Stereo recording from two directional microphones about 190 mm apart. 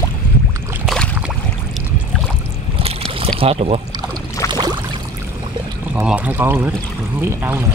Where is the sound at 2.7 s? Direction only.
30° right (ahead or behind).